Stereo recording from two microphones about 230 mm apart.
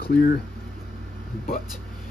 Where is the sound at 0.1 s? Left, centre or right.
Left.